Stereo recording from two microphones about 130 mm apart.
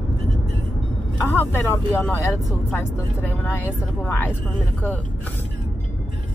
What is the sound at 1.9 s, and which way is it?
Speech, 20° left (ahead or behind).